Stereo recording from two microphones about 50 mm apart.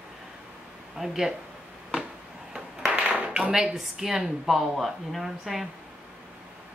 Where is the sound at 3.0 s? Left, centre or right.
Right.